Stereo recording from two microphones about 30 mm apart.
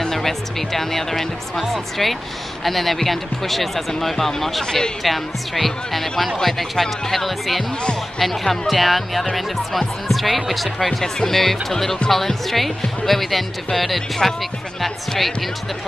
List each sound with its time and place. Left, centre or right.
0.0 s speech: centre
12.0 s speech: left
12.4 s speech: centre